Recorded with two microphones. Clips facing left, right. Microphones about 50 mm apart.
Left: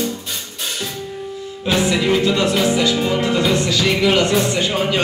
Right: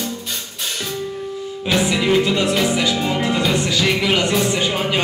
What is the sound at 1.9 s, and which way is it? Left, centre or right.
Music, centre.